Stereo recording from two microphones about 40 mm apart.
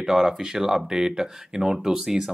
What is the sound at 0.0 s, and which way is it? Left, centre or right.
Speech, centre.